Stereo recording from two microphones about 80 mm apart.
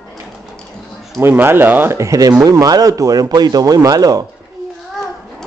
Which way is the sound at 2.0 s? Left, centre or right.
Right.